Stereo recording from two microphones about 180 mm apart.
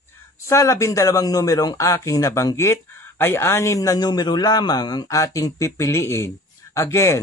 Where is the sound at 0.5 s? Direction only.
15° left (ahead or behind).